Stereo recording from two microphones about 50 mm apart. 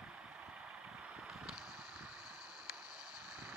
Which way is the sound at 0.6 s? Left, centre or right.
Right.